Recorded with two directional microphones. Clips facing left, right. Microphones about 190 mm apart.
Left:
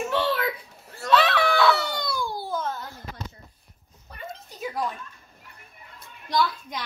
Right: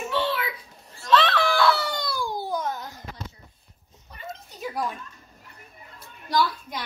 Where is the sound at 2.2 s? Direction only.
15° right (ahead or behind).